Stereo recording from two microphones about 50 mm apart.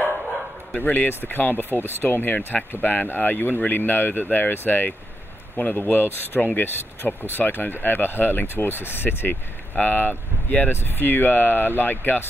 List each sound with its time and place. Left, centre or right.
0.7 s speech: left
9.8 s speech: left